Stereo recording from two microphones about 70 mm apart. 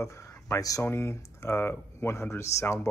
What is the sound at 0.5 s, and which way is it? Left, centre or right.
Speech, left.